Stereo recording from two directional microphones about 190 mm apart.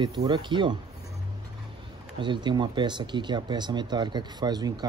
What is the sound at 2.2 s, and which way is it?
Speech, 25° right (ahead or behind).